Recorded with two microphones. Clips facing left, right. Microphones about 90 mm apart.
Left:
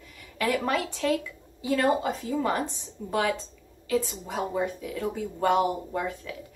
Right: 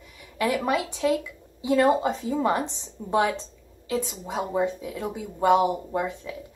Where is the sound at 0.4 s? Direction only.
15° right (ahead or behind).